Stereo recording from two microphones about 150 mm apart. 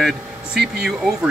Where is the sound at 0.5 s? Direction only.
90° right.